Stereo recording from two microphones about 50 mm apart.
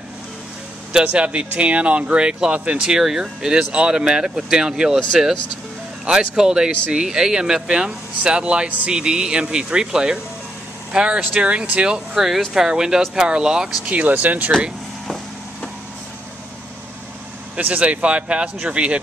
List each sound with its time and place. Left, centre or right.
1.0 s speech: right
3.0 s speech: centre
8.6 s speech: right
8.9 s speech: centre
13.8 s speech: right
17.6 s speech: right